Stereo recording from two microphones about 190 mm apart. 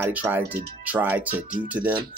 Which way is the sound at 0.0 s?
10° right (ahead or behind).